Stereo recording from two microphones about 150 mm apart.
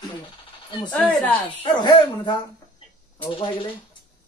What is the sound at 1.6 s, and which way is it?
Speech, 30° left (ahead or behind).